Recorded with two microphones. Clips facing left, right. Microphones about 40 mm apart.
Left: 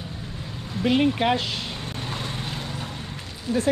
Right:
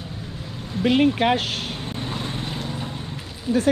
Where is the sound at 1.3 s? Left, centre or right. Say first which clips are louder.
Right 2 dB; right.